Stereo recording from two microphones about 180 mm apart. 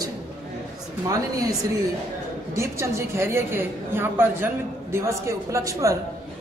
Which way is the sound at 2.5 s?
15° right (ahead or behind).